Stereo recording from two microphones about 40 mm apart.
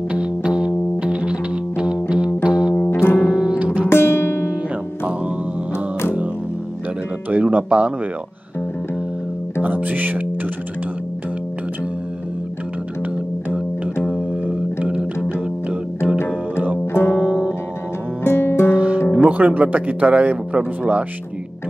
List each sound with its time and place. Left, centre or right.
0.1 s music: right
2.9 s piano: left
3.3 s music: right
3.5 s music: right
3.9 s music: left
5.7 s music: left
7.5 s speech: right
9.6 s music: right
14.5 s music: right
16.8 s music: left
17.2 s music: centre
18.2 s music: left
18.8 s music: right
19.3 s speech: right